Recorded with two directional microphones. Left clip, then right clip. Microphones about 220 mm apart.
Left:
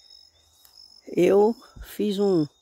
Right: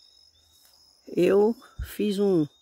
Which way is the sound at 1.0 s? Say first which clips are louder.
Left 2 dB; 5° left (ahead or behind).